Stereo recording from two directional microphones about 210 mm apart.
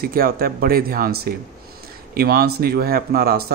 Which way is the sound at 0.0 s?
45° right (ahead or behind).